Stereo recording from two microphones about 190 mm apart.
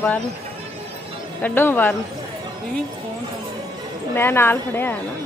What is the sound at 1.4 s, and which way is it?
Speech, 10° left (ahead or behind).